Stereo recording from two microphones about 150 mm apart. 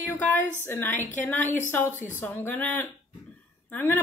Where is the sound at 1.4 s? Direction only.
55° left (ahead or behind).